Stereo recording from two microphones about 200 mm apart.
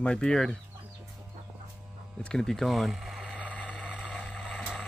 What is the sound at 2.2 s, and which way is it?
Vehicle, 5° left (ahead or behind).